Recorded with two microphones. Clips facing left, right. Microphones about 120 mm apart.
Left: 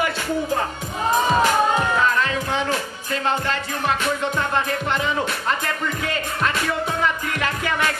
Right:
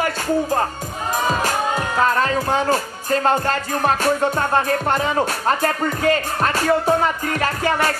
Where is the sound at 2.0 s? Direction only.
40° right (ahead or behind).